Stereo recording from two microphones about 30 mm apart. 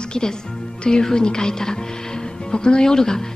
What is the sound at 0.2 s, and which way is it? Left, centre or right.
Speech, centre.